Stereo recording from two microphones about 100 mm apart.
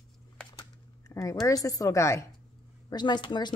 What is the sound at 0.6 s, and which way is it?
Speech, 30° left (ahead or behind).